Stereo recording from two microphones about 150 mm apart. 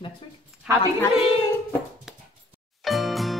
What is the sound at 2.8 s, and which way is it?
Music, centre (ahead or behind).